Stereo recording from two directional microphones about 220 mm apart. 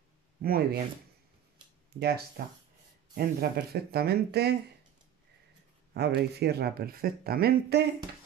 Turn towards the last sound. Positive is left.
turn(degrees=-45)  # may be behind; listen again after turning